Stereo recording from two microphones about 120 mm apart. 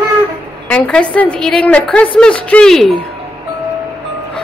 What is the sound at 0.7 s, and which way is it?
A woman's voice, 10° left (ahead or behind).